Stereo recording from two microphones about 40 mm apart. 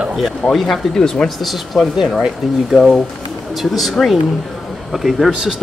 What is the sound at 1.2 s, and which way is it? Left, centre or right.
Speech, centre.